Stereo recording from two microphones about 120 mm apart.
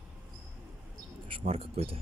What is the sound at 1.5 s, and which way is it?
Speech, 55° right (ahead or behind).